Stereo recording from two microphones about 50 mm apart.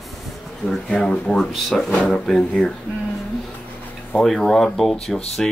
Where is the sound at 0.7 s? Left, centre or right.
Centre.